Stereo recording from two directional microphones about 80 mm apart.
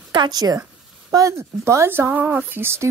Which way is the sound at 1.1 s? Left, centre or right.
Right.